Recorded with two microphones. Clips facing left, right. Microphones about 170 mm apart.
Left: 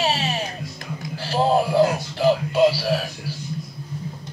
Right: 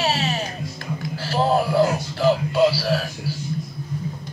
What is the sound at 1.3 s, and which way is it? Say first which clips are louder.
Music: left 1 dB; 20° left (ahead or behind).